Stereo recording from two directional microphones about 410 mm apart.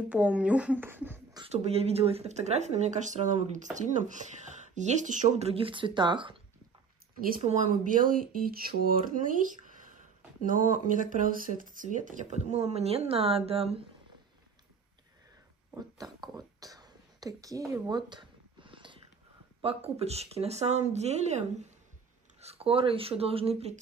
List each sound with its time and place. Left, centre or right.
0.1 s speech: centre
15.8 s a sound: centre
19.6 s speech: centre